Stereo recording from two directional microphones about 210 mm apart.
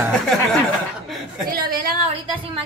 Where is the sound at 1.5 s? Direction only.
45° right (ahead or behind).